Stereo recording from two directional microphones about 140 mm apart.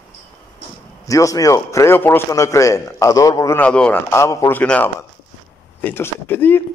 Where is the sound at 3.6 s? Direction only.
10° left (ahead or behind).